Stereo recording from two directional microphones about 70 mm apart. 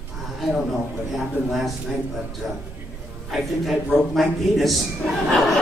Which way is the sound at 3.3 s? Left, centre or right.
Centre.